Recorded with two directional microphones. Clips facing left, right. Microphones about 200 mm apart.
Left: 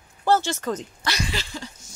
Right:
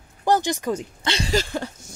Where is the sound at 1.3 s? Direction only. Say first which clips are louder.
Right 9 dB; 50° right (ahead or behind).